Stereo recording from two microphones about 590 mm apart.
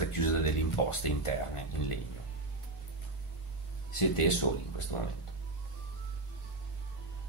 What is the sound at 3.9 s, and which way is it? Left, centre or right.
Speech, left.